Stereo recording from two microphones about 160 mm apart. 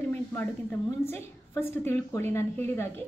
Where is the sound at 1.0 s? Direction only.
15° left (ahead or behind).